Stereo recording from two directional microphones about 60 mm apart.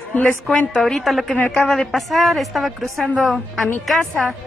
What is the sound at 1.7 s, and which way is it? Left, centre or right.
A woman's voice, centre.